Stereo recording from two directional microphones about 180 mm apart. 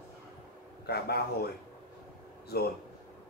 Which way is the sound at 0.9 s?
60° left (ahead or behind).